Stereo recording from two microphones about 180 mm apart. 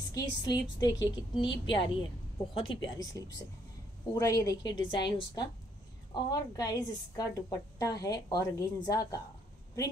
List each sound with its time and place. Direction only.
0.1 s a woman's voice: 20° left (ahead or behind)